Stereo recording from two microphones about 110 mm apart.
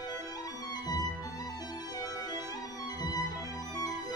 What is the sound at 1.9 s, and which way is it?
Music, 35° left (ahead or behind).